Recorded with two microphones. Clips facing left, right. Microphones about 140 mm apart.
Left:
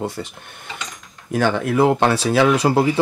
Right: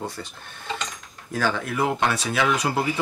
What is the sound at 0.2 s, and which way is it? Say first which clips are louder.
Speech: left 6 dB; 30° left (ahead or behind).